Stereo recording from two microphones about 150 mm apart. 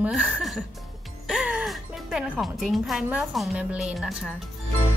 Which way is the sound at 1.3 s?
5° right (ahead or behind).